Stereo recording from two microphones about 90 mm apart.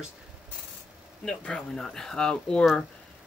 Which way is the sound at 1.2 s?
10° left (ahead or behind).